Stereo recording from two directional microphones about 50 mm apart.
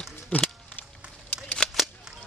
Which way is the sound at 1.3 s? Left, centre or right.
Left.